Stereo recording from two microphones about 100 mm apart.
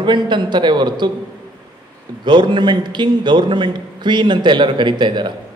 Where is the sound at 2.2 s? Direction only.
50° right (ahead or behind).